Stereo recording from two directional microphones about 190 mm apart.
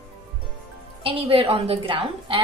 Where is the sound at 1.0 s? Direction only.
30° right (ahead or behind).